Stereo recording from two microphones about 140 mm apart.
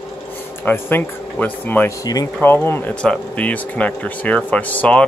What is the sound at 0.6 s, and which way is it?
Speech, 15° left (ahead or behind).